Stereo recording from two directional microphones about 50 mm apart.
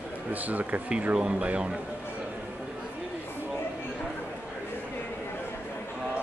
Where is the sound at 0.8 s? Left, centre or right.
Right.